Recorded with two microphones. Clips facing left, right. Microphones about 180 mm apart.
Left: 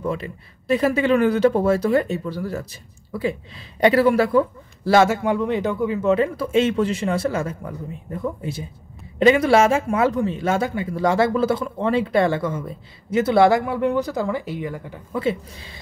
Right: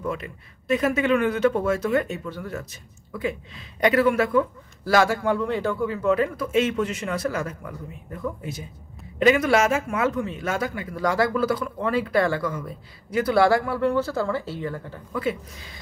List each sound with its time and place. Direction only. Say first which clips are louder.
0.0 s speech: left 4 dB; 30° left (ahead or behind); by 15.0 s 15° left (ahead or behind)
15.1 s speech: left 4 dB; 25° left (ahead or behind)